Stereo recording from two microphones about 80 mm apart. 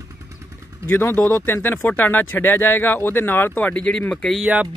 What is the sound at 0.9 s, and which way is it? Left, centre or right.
Speech, left.